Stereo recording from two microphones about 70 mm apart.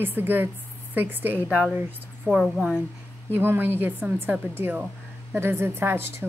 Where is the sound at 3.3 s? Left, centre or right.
Right.